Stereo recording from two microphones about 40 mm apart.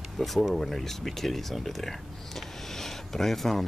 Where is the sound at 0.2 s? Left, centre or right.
Centre.